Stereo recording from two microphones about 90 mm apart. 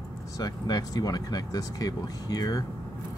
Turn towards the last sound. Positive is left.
turn(degrees=45)  # may be behind; listen again after turning